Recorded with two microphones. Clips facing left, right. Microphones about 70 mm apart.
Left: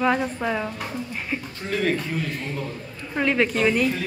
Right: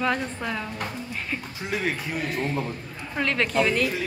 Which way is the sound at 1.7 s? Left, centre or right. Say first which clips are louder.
Left 4 dB; centre.